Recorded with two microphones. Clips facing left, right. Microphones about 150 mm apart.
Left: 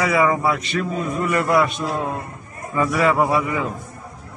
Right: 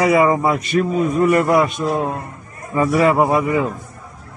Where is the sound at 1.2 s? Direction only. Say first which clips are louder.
Right 5 dB; 30° right (ahead or behind).